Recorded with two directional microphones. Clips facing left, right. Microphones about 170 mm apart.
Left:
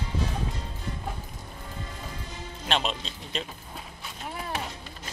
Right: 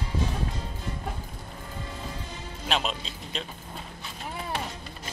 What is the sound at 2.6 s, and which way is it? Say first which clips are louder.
Speech: left 1 dB; centre (ahead or behind).